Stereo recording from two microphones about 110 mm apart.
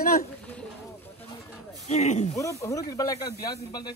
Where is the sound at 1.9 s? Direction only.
90° left.